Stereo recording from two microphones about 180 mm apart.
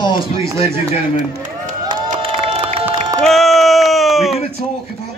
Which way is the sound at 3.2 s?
Centre (ahead or behind).